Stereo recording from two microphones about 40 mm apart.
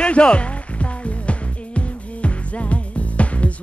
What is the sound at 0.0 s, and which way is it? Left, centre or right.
Speech, left.